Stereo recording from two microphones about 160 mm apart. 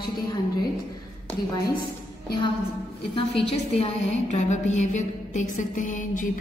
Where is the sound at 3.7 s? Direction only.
40° left (ahead or behind).